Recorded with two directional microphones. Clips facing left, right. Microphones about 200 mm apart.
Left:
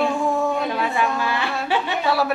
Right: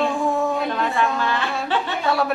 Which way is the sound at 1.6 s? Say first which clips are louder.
Left 1 dB; 5° left (ahead or behind).